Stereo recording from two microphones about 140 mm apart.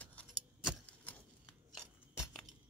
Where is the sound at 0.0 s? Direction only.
10° left (ahead or behind).